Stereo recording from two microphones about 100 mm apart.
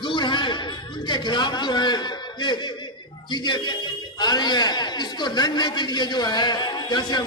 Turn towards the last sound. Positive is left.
turn(degrees=45)  # may be behind; listen again after turning